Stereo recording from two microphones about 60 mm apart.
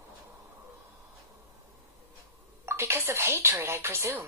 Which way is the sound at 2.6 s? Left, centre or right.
Right.